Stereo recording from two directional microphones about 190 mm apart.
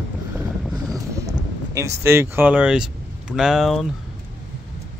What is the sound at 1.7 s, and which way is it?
Speech, 15° right (ahead or behind).